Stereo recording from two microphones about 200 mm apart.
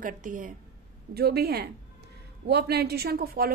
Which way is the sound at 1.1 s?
50° right (ahead or behind).